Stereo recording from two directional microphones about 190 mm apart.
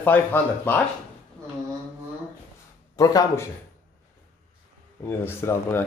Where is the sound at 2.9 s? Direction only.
20° left (ahead or behind).